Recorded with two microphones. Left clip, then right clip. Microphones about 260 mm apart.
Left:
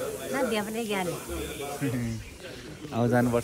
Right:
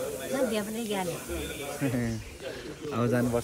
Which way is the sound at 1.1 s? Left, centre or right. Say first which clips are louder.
Even; right.